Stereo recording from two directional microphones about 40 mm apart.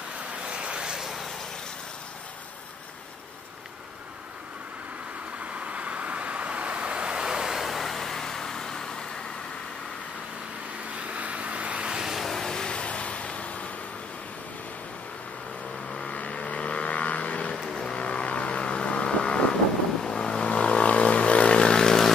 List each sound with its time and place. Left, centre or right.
0.4 s vehicle: right
5.5 s vehicle: right; by 9.2 s centre
11.1 s vehicle: right
11.8 s vehicle: centre
12.1 s vehicle: centre
12.4 s vehicle: centre
16.1 s vehicle: left
17.6 s vehicle: centre
17.9 s vehicle: left; by 22.1 s centre